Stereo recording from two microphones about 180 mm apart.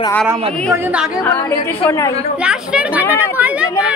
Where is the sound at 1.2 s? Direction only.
15° left (ahead or behind).